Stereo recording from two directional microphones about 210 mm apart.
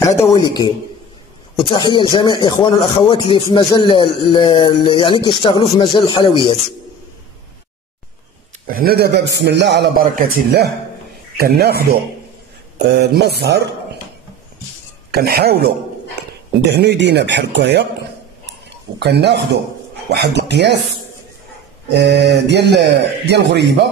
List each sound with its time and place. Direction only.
1.7 s speech: 20° left (ahead or behind)
8.7 s a man's voice: 45° right (ahead or behind)
15.1 s a man's voice: 50° right (ahead or behind)
16.7 s a man's voice: 55° right (ahead or behind)
18.9 s a man's voice: 50° right (ahead or behind)
21.9 s a man's voice: 55° right (ahead or behind)